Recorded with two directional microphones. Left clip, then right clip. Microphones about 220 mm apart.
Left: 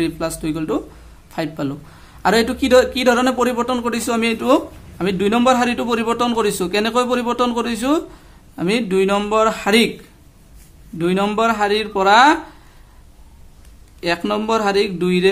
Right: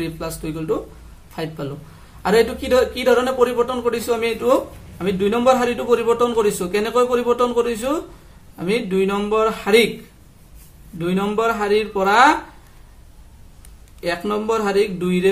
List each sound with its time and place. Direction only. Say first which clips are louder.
0.0 s a man's voice: left 5 dB; 40° left (ahead or behind)
11.0 s speech: left 3 dB; 40° left (ahead or behind)
14.0 s speech: left 2 dB; 40° left (ahead or behind)